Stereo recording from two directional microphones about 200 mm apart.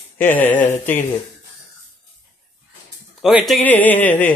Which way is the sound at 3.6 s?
10° left (ahead or behind).